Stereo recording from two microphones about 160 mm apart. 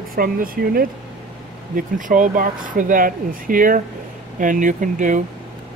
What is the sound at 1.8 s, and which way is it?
Speech, 55° right (ahead or behind).